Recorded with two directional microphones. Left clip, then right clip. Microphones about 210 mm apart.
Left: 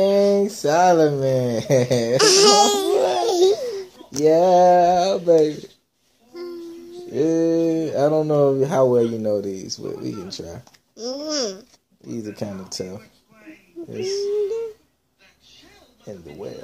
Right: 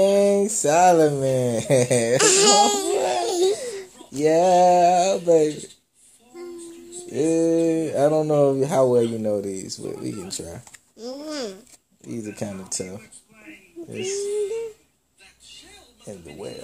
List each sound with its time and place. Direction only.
0.0 s speech: 20° right (ahead or behind)
2.1 s baby cry: centre (ahead or behind)
2.9 s laughter: 15° right (ahead or behind)
3.2 s laughter: 5° left (ahead or behind)
3.5 s a sound: 15° right (ahead or behind)
6.3 s child singing: centre (ahead or behind)
7.2 s speech: 20° right (ahead or behind)
11.0 s speech: centre (ahead or behind)
12.4 s speech: 15° right (ahead or behind)
16.1 s speech: 10° right (ahead or behind)